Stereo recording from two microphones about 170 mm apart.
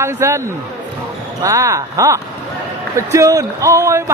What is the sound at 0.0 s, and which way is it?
Speech, 15° right (ahead or behind).